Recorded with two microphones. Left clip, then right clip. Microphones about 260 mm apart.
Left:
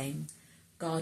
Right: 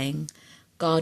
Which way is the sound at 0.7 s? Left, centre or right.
Right.